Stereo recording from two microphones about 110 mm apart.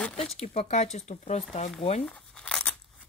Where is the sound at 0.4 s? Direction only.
75° left (ahead or behind).